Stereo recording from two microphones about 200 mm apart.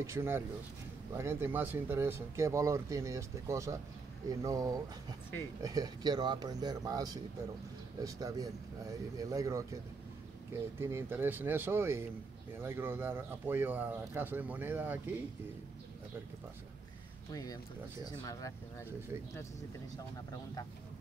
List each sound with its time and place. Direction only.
0.0 s speech: 15° right (ahead or behind)
10.8 s speech: 10° right (ahead or behind)
17.3 s speech: 20° left (ahead or behind)